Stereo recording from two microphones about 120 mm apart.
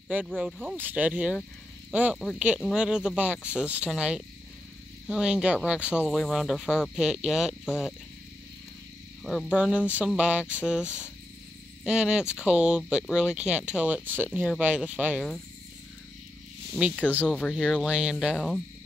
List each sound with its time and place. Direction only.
0.4 s speech: centre (ahead or behind)
0.7 s speech: 15° right (ahead or behind)
9.2 s speech: centre (ahead or behind)
9.5 s speech: 10° right (ahead or behind)
10.4 s speech: 15° left (ahead or behind)
11.8 s speech: 5° right (ahead or behind)
17.2 s speech: 10° left (ahead or behind)
17.8 s speech: 5° right (ahead or behind)